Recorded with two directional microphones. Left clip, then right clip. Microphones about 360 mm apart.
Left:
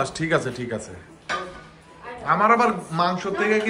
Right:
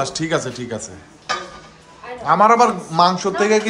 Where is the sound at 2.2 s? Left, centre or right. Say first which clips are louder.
Right 5 dB; centre.